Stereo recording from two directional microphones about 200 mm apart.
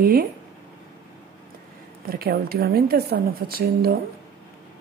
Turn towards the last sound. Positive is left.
turn(degrees=-50)  # may be behind; listen again after turning